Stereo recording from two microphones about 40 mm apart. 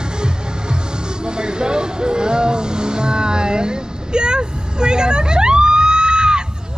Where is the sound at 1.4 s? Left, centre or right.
Right.